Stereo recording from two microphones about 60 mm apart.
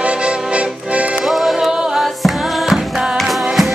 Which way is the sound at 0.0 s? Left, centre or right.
Centre.